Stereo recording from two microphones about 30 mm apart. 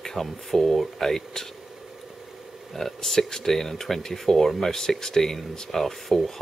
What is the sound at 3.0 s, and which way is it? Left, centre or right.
Speech, centre.